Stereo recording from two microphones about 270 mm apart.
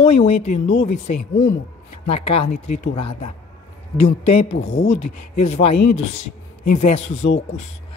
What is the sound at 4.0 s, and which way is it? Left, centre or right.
Speech, left.